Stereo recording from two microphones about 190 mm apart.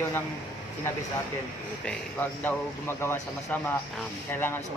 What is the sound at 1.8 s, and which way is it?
Speech, 10° left (ahead or behind).